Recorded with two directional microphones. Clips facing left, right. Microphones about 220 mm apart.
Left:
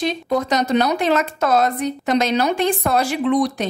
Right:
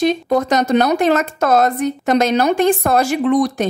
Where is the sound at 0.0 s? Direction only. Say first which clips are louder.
Right 5 dB; 50° right (ahead or behind).